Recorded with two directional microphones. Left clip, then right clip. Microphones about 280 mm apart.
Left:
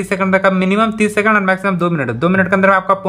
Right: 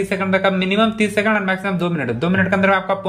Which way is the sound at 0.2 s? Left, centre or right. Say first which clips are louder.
Left 6 dB; centre.